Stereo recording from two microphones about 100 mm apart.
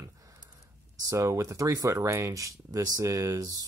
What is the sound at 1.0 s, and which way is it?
Speech, 30° right (ahead or behind).